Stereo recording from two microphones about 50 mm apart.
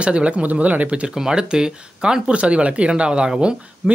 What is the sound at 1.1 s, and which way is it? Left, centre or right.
Speech, centre.